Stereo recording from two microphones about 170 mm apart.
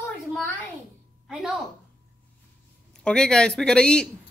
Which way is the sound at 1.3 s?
Centre (ahead or behind).